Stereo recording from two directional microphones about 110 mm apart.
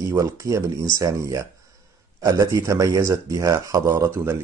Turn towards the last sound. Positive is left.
turn(degrees=-25)  # may be behind; listen again after turning